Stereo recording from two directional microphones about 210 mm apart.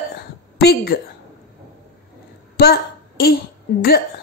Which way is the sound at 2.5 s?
50° left (ahead or behind).